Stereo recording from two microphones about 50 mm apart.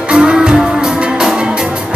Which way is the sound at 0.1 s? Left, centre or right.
Centre.